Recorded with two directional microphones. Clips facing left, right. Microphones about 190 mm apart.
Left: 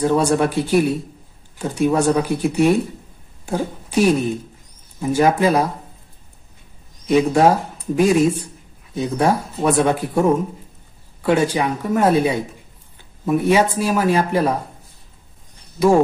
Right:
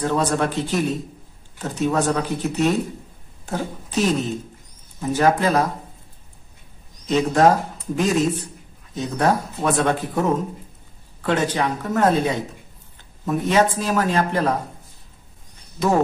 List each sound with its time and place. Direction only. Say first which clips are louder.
0.0 s a woman's voice: left 4 dB; 10° left (ahead or behind)
7.1 s speech: left 2 dB; 10° left (ahead or behind)
15.8 s speech: left 6 dB; 10° left (ahead or behind)